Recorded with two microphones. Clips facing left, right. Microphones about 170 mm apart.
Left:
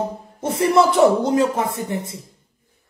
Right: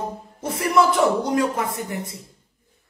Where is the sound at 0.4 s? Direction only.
30° left (ahead or behind).